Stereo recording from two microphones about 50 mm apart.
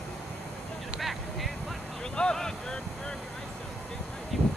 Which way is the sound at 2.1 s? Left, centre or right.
Centre.